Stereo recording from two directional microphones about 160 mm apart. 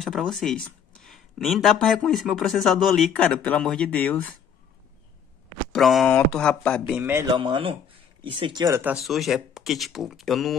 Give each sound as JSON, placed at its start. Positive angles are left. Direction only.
{"t": 0.0, "sound": "speech", "side_deg": 0}
{"t": 5.7, "sound": "speech", "side_deg": 0}
{"t": 6.9, "sound": "a man's voice", "side_deg": -15}
{"t": 7.3, "sound": "speech", "side_deg": -30}
{"t": 8.8, "sound": "speech", "side_deg": 0}